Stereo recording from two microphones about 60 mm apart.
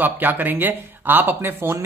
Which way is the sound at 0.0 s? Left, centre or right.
Right.